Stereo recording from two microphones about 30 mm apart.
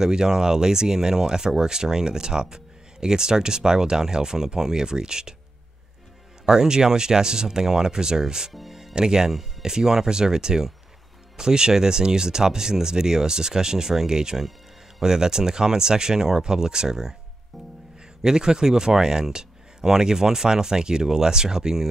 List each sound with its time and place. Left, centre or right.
0.0 s speech: right
6.4 s speech: right
18.2 s speech: right